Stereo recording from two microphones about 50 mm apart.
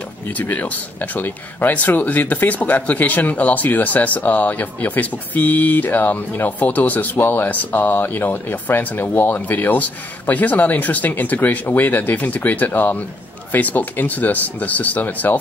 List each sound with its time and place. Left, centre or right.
0.3 s speech: left